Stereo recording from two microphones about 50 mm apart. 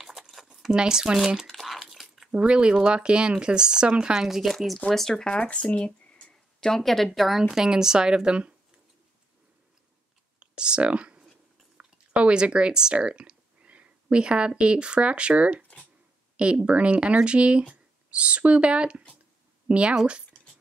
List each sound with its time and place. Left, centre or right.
0.0 s a sound: centre
0.7 s speech: centre
1.6 s crumpling: centre
2.3 s a woman's voice: right; by 4.7 s centre
4.9 s speech: centre
5.3 s a sound: left
6.7 s a woman's voice: centre
7.5 s speech: centre
10.4 s a sound: centre
11.7 s speech: right